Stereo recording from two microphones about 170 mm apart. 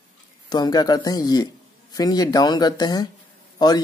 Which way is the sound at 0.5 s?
25° left (ahead or behind).